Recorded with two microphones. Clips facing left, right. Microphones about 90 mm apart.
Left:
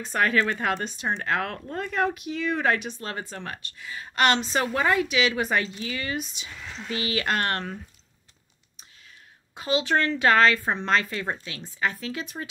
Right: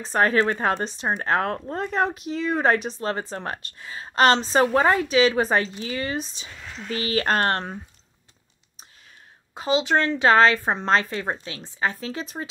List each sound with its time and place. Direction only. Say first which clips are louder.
0.0 s speech: right 3 dB; 30° right (ahead or behind)
9.5 s a woman's voice: right 3 dB; 25° right (ahead or behind)